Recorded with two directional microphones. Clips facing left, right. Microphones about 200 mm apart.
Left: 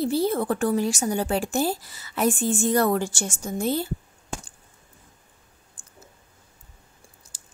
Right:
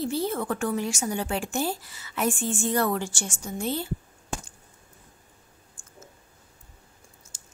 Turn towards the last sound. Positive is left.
turn(degrees=35)  # may be behind; listen again after turning